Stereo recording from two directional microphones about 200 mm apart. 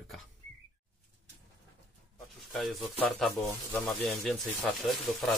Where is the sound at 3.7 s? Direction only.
Centre (ahead or behind).